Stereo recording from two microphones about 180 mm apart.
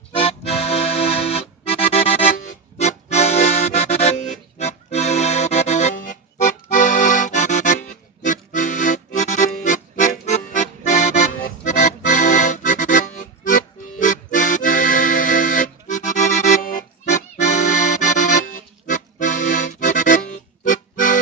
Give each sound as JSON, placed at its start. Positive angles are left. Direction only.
{"t": 0.1, "sound": "accordion", "side_deg": 30}